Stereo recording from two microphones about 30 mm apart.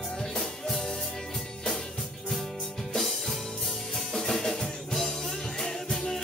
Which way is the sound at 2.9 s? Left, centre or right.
Centre.